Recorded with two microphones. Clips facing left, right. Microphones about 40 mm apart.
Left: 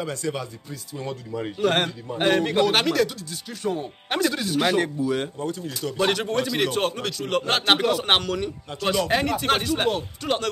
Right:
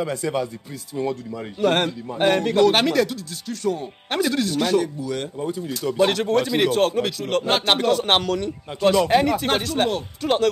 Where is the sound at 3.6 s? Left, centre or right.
Left.